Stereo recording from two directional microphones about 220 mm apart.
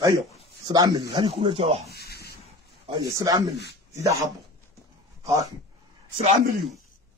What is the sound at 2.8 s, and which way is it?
Speech, 15° right (ahead or behind).